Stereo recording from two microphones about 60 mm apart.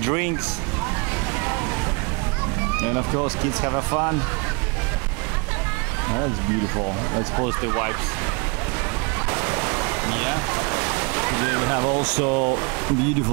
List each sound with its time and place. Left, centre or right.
0.0 s speech: right
2.8 s speech: centre
7.2 s speech: right
9.3 s waves: centre